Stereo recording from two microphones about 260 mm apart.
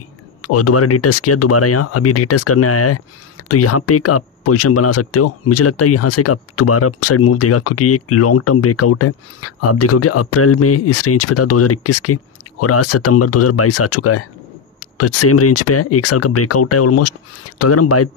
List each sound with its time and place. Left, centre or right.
0.4 s speech: left